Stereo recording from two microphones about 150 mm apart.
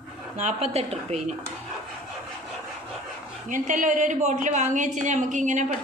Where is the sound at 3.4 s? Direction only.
60° right (ahead or behind).